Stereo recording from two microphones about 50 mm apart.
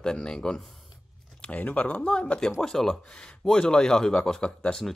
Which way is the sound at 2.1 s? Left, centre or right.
Centre.